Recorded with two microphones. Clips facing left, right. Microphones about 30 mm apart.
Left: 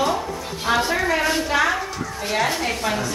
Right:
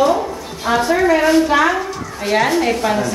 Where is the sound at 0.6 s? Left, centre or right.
Centre.